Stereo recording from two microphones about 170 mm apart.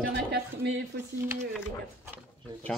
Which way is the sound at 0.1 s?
90° right.